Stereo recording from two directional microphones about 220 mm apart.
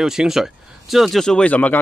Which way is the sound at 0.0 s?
Centre (ahead or behind).